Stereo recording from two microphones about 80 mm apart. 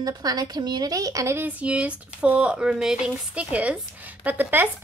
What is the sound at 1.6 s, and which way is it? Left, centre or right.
A woman's voice, centre.